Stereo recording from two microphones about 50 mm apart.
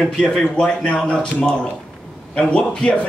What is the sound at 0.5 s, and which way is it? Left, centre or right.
Speech, centre.